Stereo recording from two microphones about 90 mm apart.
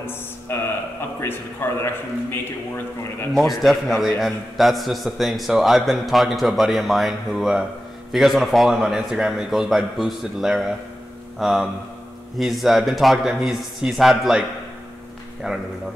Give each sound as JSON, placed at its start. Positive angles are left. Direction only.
{"t": 0.5, "sound": "a man's voice", "side_deg": 25}
{"t": 3.3, "sound": "a man's voice", "side_deg": 0}